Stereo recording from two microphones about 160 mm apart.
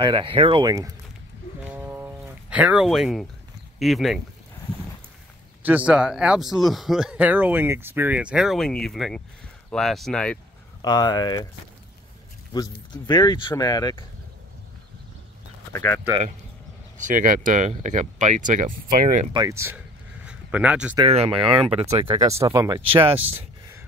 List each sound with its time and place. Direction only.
0.0 s speech: 30° right (ahead or behind)
1.6 s a sound: 10° right (ahead or behind)
3.8 s speech: centre (ahead or behind)
5.6 s speech: 10° right (ahead or behind); by 10.4 s 5° left (ahead or behind)
10.8 s speech: 25° left (ahead or behind)
12.9 s speech: 25° left (ahead or behind)
15.7 s speech: 15° left (ahead or behind)
17.0 s speech: 55° right (ahead or behind)
19.3 s speech: 20° right (ahead or behind)
20.2 s a sound: 5° right (ahead or behind)
21.1 s speech: 40° right (ahead or behind)
22.4 s speech: 20° right (ahead or behind)
22.9 s speech: 35° right (ahead or behind)